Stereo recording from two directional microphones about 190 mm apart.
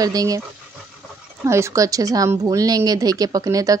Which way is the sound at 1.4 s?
15° right (ahead or behind).